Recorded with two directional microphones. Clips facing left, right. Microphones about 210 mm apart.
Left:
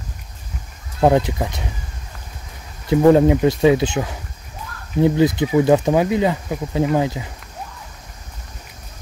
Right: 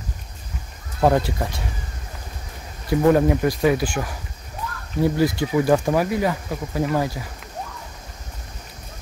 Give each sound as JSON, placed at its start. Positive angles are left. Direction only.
{"t": 1.0, "sound": "speech", "side_deg": 15}
{"t": 2.9, "sound": "speech", "side_deg": 25}